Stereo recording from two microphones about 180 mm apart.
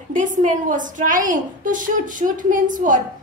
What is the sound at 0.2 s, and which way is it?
A woman's voice, 45° right (ahead or behind).